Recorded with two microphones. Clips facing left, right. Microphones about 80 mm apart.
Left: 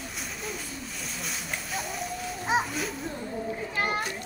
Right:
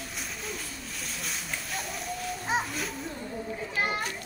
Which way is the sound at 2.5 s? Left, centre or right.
Centre.